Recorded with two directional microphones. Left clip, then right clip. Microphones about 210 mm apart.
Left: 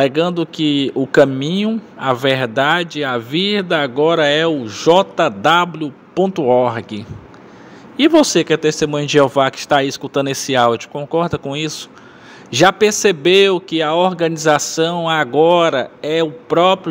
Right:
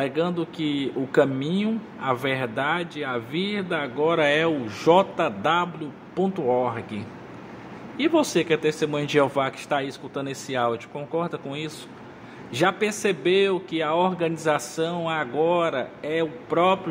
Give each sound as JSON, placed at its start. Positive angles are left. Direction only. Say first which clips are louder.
{"t": 0.0, "sound": "speech", "louder": "left 10 dB", "side_deg": 25}
{"t": 8.0, "sound": "speech", "louder": "left 10 dB", "side_deg": 30}